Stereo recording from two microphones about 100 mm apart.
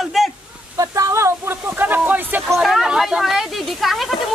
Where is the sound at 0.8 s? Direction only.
35° right (ahead or behind); by 2.4 s 15° right (ahead or behind).